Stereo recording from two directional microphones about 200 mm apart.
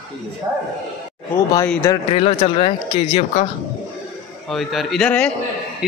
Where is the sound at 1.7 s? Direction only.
10° left (ahead or behind).